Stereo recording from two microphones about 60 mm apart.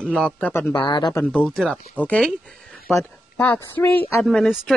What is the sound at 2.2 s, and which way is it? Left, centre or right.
Speech, centre.